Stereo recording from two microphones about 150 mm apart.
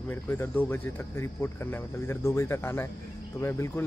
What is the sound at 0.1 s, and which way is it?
Speech, 15° left (ahead or behind).